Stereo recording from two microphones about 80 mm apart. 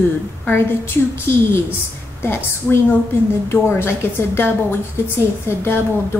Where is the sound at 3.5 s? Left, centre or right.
Left.